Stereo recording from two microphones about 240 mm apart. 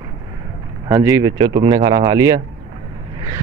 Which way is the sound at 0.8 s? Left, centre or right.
Centre.